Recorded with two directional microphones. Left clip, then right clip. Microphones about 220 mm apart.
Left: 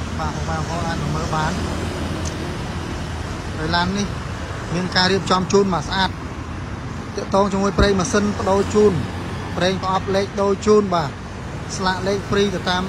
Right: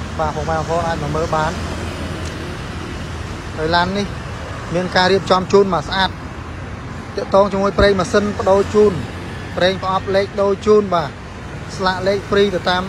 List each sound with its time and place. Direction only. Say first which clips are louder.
0.2 s speech: right 7 dB; 10° left (ahead or behind)
3.6 s speech: right 5 dB; 15° left (ahead or behind)
7.2 s speech: right 5 dB; 15° left (ahead or behind)